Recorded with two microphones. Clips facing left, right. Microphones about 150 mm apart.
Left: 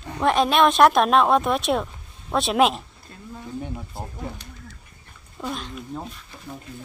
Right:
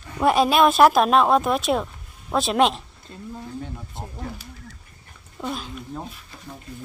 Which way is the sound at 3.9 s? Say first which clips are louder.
Left 1 dB; 5° left (ahead or behind).